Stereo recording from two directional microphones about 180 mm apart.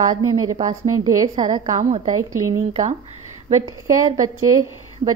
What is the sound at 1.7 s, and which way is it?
A woman's voice, 40° right (ahead or behind).